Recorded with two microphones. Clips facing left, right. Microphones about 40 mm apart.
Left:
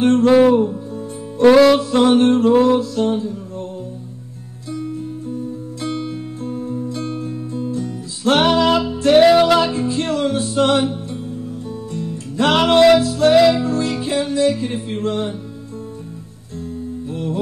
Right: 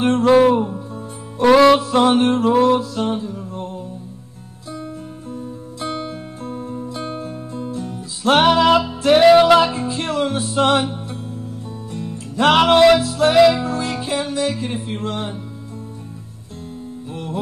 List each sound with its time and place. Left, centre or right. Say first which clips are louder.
0.6 s music: left 4 dB; centre
5.8 s music: left 1 dB; centre
6.9 s music: left 2 dB; right
8.3 s music: right 1 dB; centre
11.9 s music: even; centre
17.1 s music: left 4 dB; centre